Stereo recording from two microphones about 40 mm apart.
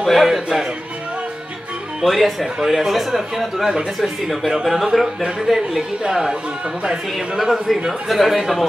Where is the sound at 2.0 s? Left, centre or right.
Centre.